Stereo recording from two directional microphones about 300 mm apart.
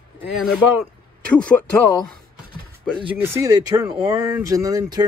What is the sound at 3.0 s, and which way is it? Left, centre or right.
Speech, centre.